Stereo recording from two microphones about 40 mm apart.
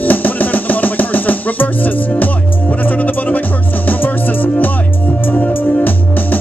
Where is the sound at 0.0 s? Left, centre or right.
Left.